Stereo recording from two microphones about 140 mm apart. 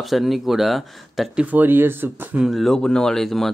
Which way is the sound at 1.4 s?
15° right (ahead or behind).